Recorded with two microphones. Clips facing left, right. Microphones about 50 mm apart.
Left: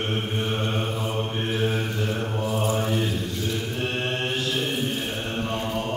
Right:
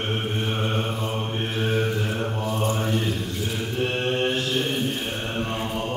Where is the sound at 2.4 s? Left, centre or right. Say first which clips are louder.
Left 2 dB; centre.